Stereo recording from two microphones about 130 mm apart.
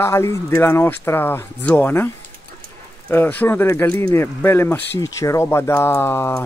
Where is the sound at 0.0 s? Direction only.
20° left (ahead or behind).